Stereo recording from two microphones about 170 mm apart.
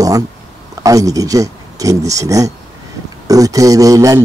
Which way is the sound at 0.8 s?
20° right (ahead or behind).